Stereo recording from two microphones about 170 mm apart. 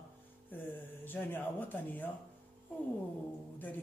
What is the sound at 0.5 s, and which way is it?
Speech, 10° left (ahead or behind).